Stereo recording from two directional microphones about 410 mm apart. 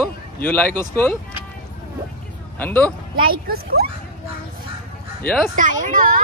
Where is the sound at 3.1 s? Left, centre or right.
Right.